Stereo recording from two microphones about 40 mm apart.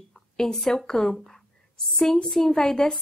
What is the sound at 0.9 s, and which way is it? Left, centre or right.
A woman's voice, centre.